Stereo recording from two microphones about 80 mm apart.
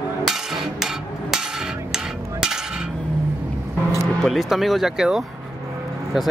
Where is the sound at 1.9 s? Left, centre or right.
Centre.